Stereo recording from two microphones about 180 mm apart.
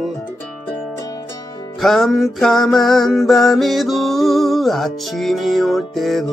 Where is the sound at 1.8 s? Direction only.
Centre (ahead or behind).